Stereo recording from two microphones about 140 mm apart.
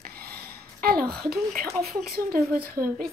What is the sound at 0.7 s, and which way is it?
A woman's voice, 90° right.